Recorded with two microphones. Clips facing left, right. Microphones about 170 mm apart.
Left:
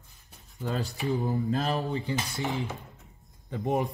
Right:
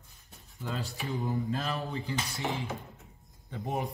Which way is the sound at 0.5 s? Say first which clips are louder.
Left 5 dB; 40° left (ahead or behind).